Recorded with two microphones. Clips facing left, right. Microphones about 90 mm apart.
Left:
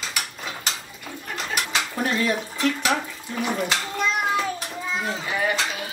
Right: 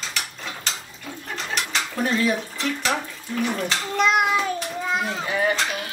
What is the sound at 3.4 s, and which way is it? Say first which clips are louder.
Speech: even; 10° left (ahead or behind).